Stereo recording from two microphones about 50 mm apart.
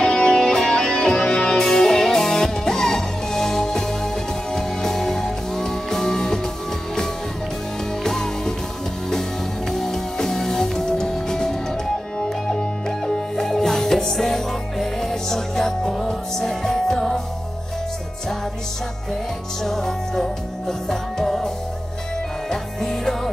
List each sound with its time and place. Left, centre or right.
0.0 s music: centre
8.0 s music: centre
9.7 s music: centre
19.6 s music: centre
22.5 s music: centre